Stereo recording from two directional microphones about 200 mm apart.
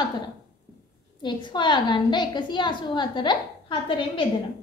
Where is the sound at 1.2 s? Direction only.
25° left (ahead or behind).